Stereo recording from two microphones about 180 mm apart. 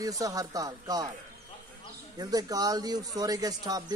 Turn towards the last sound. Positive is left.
turn(degrees=-20)  # may be behind; listen again after turning